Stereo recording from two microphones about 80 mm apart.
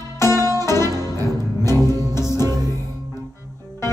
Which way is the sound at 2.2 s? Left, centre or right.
Left.